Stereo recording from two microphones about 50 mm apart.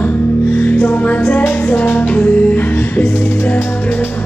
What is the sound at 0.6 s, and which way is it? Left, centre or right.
Music, left.